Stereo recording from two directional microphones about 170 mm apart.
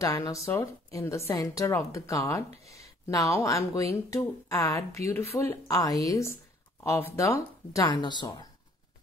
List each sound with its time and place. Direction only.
0.0 s a woman's voice: 20° left (ahead or behind)